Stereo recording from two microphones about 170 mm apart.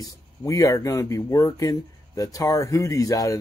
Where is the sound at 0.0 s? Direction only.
20° left (ahead or behind).